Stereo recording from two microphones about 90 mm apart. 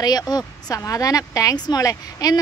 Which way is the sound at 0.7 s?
40° left (ahead or behind).